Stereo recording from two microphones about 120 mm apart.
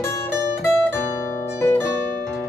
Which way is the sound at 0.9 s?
20° left (ahead or behind).